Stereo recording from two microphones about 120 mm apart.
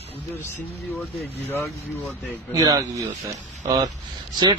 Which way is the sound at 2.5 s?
30° right (ahead or behind).